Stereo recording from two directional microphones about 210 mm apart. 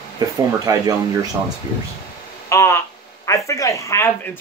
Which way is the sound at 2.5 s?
15° left (ahead or behind).